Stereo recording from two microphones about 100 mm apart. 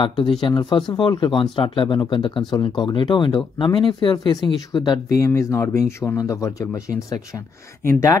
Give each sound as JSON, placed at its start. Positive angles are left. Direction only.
{"t": 0.4, "sound": "speech", "side_deg": 50}
{"t": 5.2, "sound": "speech", "side_deg": 30}